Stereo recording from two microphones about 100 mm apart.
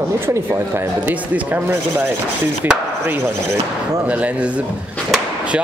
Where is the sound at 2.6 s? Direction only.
20° right (ahead or behind).